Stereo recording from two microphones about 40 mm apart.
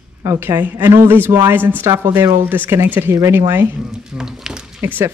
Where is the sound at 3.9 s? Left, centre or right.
Centre.